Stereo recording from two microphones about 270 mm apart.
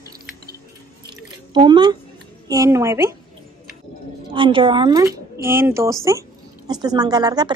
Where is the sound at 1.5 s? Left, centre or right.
Centre.